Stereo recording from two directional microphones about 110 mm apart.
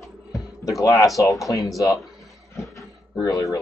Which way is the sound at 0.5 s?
30° left (ahead or behind).